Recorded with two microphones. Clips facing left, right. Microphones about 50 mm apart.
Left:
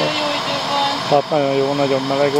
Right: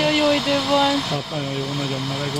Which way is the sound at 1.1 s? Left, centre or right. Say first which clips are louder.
Left 11 dB; left.